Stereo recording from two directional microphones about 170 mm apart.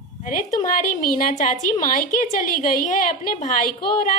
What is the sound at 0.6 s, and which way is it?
A woman's voice, 50° left (ahead or behind).